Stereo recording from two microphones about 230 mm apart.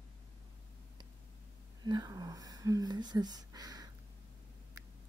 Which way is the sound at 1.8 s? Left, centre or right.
Centre.